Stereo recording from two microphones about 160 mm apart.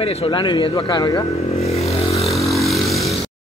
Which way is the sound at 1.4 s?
40° left (ahead or behind).